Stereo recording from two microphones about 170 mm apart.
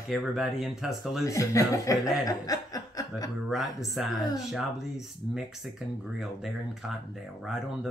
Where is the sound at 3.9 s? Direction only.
Centre (ahead or behind).